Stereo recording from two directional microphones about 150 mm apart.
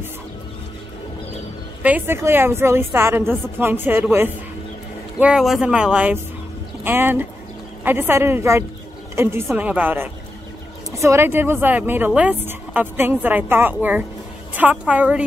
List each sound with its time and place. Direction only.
1.8 s a woman's voice: 10° right (ahead or behind)
5.2 s a woman's voice: 5° right (ahead or behind)